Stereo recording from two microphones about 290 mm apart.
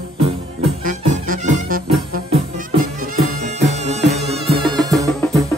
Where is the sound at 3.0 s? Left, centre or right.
Right.